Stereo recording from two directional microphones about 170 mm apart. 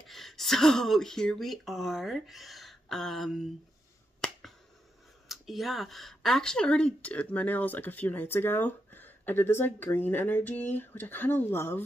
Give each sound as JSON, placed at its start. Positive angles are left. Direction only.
{"t": 0.0, "sound": "speech", "side_deg": 0}
{"t": 4.2, "sound": "finger snapping", "side_deg": 0}
{"t": 5.3, "sound": "speech", "side_deg": 0}